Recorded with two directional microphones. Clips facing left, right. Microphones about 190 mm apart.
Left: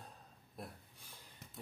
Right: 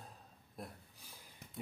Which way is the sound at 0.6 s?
Centre (ahead or behind).